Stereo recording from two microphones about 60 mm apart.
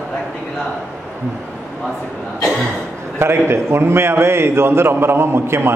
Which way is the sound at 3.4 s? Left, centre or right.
Right.